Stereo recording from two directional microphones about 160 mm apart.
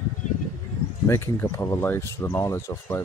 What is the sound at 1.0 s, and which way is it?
Speech, 15° left (ahead or behind).